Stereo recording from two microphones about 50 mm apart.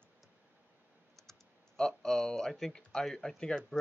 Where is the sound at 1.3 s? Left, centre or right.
Centre.